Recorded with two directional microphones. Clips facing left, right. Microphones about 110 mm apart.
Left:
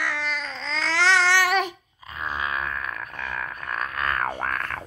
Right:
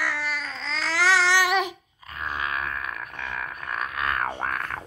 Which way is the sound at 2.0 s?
5° left (ahead or behind).